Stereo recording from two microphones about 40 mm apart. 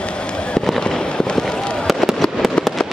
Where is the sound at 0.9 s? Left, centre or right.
Left.